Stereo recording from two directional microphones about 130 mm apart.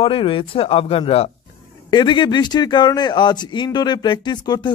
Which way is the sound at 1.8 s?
35° left (ahead or behind).